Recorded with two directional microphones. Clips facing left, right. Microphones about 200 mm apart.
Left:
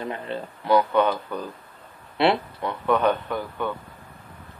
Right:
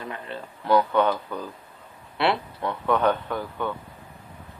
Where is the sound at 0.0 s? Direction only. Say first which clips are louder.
Left 5 dB; 25° left (ahead or behind).